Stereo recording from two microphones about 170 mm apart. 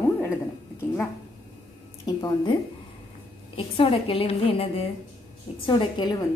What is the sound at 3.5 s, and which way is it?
A woman's voice, 30° left (ahead or behind).